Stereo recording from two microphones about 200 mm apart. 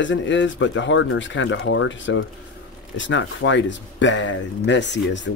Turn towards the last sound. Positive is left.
turn(degrees=65)  # may be behind; listen again after turning